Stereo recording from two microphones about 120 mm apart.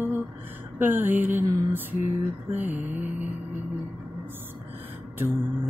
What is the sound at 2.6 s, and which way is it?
Mantra, 15° right (ahead or behind).